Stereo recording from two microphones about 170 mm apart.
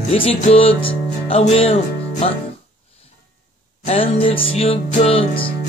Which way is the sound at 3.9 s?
35° left (ahead or behind).